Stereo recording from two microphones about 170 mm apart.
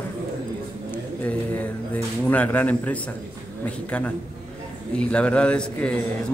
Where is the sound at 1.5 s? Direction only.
10° left (ahead or behind).